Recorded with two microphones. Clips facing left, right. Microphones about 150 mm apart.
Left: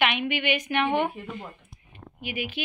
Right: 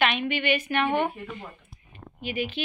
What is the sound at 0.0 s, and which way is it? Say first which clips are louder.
Speech: right 1 dB; 15° left (ahead or behind).